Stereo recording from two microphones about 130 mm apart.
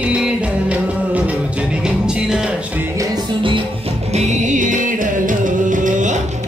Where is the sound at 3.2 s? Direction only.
40° right (ahead or behind).